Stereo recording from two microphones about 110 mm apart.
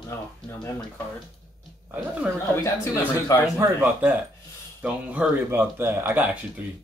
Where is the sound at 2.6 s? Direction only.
25° left (ahead or behind).